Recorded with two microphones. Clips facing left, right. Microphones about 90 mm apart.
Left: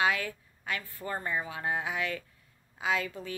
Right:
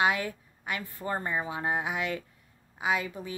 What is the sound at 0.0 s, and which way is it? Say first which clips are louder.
A woman's voice: right 2 dB; 20° right (ahead or behind).